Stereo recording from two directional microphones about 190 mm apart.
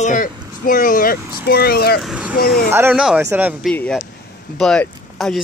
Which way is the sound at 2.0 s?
5° right (ahead or behind).